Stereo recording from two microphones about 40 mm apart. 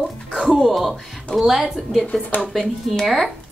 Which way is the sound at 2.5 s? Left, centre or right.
Centre.